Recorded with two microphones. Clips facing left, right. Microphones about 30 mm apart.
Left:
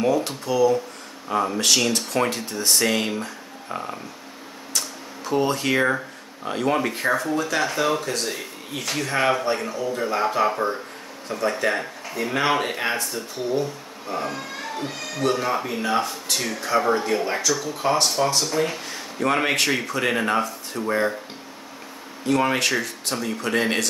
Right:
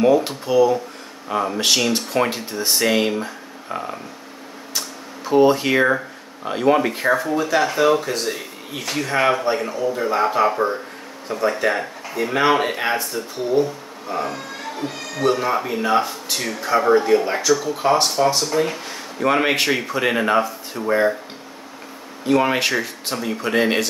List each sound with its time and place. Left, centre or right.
0.0 s speech: centre
4.7 s a sound: centre
6.4 s speech: centre
22.2 s speech: centre